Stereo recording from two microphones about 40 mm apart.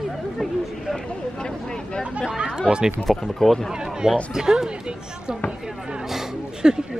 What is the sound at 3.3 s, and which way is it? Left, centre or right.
Speech, centre.